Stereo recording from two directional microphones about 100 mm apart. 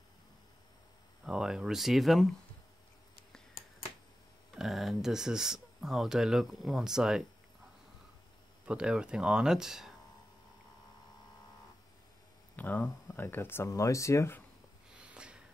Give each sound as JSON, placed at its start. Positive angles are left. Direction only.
{"t": 1.2, "sound": "speech", "side_deg": -5}
{"t": 4.6, "sound": "speech", "side_deg": 0}
{"t": 8.6, "sound": "speech", "side_deg": -10}
{"t": 12.5, "sound": "speech", "side_deg": 15}
{"t": 13.7, "sound": "speech", "side_deg": 30}
{"t": 15.0, "sound": "snort", "side_deg": -10}